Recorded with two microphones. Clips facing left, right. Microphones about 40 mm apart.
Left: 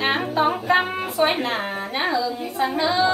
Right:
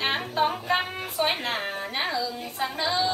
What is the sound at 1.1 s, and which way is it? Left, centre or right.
A woman's voice, centre.